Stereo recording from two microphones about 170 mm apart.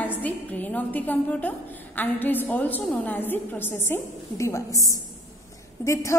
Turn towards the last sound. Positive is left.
turn(degrees=15)  # may be behind; listen again after turning